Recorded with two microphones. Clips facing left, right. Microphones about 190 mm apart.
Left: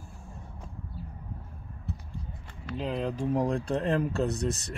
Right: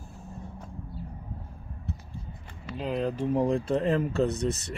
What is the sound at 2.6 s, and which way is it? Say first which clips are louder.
Speech: right 2 dB; 5° right (ahead or behind).